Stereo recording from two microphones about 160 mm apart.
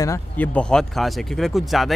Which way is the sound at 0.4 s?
5° left (ahead or behind).